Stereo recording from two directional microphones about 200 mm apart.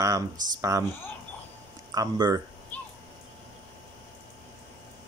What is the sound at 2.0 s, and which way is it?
Speech, 20° right (ahead or behind).